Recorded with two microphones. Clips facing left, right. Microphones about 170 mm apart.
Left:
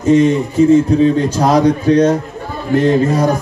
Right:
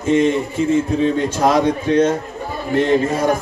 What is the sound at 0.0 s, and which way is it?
Speech, 40° left (ahead or behind).